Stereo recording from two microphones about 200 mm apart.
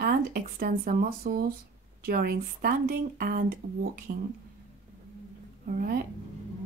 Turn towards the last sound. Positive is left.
turn(degrees=-45)  # may be behind; listen again after turning